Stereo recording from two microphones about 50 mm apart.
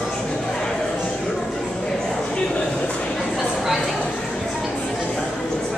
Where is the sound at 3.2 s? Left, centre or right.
Centre.